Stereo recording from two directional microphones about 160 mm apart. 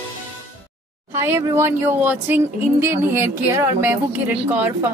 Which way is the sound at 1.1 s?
15° right (ahead or behind).